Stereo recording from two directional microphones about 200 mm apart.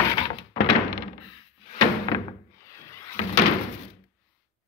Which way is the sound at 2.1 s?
20° left (ahead or behind).